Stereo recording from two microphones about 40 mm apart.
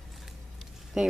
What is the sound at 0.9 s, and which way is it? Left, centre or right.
Speech, centre.